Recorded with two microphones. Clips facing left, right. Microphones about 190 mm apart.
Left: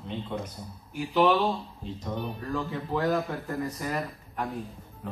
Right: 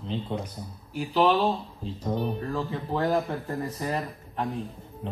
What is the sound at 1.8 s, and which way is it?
Speech, 35° right (ahead or behind).